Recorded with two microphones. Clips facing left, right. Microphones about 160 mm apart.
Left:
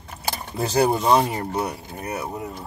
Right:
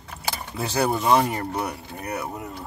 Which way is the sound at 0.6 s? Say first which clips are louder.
Left 4 dB; 35° left (ahead or behind).